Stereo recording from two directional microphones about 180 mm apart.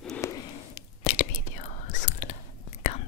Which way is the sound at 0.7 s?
45° left (ahead or behind).